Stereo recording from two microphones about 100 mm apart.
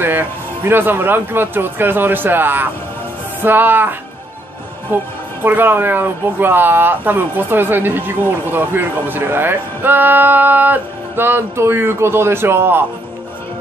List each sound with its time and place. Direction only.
0.0 s speech: 20° right (ahead or behind)
4.9 s speech: 20° right (ahead or behind)